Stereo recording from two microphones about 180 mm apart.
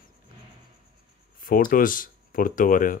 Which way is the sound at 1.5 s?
50° left (ahead or behind).